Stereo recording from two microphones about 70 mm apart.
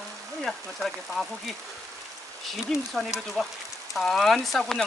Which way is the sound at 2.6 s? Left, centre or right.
Centre.